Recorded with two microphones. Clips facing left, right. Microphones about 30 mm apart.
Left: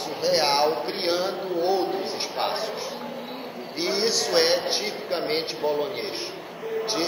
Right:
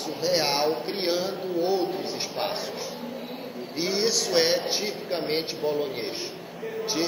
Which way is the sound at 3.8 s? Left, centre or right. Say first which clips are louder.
Left 1 dB; centre.